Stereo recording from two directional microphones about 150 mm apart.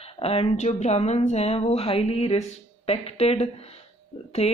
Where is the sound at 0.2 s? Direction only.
40° left (ahead or behind).